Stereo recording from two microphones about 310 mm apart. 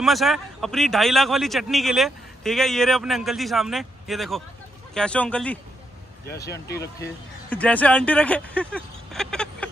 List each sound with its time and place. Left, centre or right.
0.0 s a man's voice: centre
6.4 s speech: left
6.8 s a man's voice: centre